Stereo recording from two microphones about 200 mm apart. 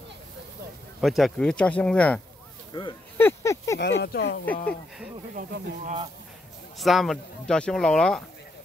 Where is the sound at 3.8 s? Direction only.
60° left (ahead or behind).